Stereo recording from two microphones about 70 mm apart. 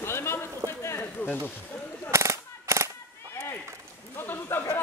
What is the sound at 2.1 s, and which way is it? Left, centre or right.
Machine gun, right.